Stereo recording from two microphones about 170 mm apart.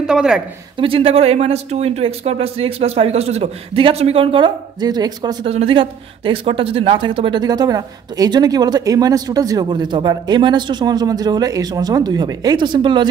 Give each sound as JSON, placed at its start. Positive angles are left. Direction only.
{"t": 0.0, "sound": "speech", "side_deg": -5}
{"t": 0.7, "sound": "speech", "side_deg": -35}